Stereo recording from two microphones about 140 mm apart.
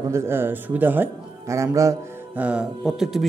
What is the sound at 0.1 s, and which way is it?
A man's voice, 20° right (ahead or behind).